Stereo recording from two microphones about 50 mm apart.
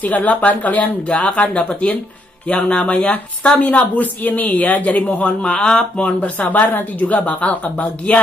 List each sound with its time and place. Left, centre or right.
0.0 s speech: left
7.2 s speech: left